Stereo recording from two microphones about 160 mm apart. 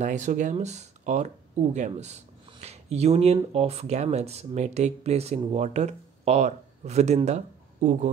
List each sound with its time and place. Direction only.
0.0 s speech: 50° right (ahead or behind)